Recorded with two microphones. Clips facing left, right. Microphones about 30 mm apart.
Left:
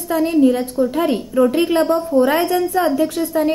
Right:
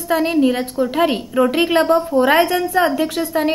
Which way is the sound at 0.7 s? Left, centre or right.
Right.